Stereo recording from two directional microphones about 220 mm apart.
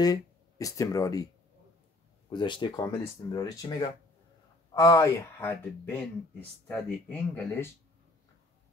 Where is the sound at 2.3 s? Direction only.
20° left (ahead or behind).